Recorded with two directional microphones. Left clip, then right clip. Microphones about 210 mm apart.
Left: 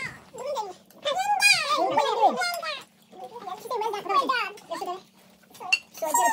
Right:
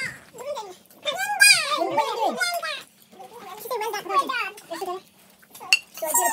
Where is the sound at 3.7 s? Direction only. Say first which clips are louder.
Right 1 dB; 10° right (ahead or behind).